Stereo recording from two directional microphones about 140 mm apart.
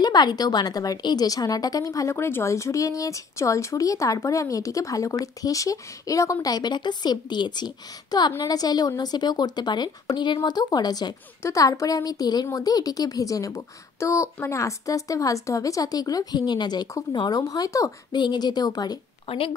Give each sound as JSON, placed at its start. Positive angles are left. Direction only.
{"t": 0.0, "sound": "a woman's voice", "side_deg": 30}
{"t": 19.2, "sound": "a woman's voice", "side_deg": 40}